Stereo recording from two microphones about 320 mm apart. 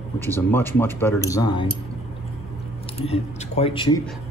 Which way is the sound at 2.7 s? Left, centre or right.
Centre.